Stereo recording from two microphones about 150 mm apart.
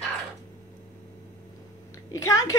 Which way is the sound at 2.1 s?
20° left (ahead or behind).